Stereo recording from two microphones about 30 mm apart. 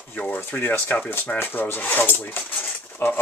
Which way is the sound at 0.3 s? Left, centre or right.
Left.